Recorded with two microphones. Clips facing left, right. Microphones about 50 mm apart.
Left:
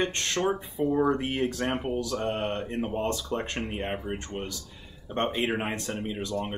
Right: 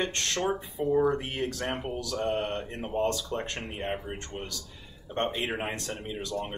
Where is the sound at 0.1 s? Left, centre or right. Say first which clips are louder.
Left 2 dB; centre.